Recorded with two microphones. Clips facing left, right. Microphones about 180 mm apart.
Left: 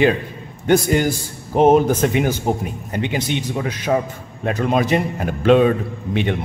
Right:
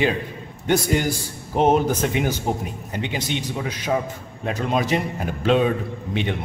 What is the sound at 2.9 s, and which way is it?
Speech, 55° left (ahead or behind).